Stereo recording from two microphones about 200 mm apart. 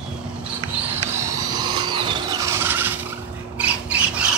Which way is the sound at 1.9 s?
20° right (ahead or behind).